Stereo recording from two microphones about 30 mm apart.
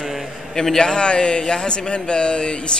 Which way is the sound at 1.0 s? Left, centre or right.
Left.